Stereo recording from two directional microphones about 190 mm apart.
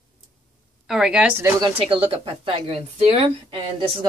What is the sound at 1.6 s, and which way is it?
Speech, 30° right (ahead or behind).